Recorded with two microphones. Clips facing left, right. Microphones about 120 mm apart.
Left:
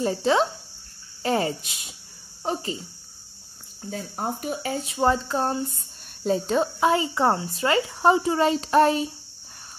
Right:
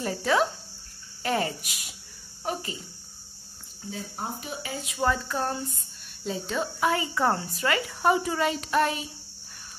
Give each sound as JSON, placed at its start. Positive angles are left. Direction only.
{"t": 0.0, "sound": "a woman's voice", "side_deg": 25}
{"t": 3.9, "sound": "speech", "side_deg": 45}
{"t": 6.2, "sound": "speech", "side_deg": 40}
{"t": 6.8, "sound": "a woman's voice", "side_deg": 25}